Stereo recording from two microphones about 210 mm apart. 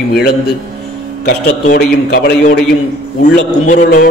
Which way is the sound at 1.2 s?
40° left (ahead or behind).